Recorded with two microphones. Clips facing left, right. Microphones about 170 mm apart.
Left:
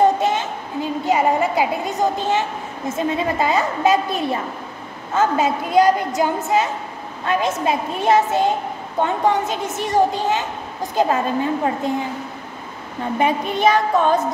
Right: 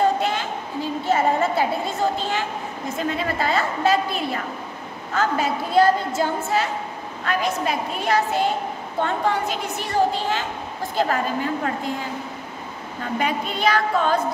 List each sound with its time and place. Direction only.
0.0 s a sound: 20° left (ahead or behind)
3.0 s a woman's voice: 20° left (ahead or behind)
13.2 s a woman's voice: 20° left (ahead or behind)